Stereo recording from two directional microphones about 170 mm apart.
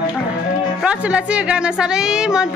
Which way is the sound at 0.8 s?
5° right (ahead or behind).